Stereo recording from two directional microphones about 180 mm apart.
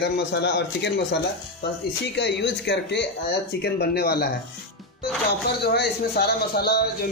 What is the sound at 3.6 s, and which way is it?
Speech, 60° left (ahead or behind).